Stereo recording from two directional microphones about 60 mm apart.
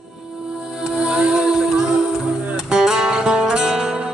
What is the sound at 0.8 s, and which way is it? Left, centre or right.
Music, centre.